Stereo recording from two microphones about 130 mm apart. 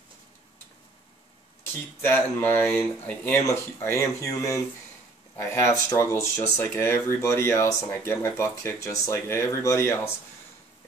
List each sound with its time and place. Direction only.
1.6 s speech: 15° left (ahead or behind)